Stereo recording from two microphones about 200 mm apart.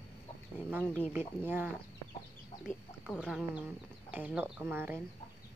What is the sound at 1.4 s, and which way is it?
Speech, 10° right (ahead or behind).